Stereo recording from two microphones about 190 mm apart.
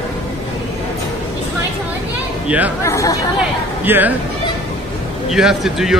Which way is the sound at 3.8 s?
10° right (ahead or behind).